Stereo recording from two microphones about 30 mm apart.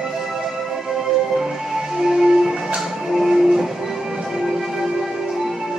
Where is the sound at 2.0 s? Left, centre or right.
Centre.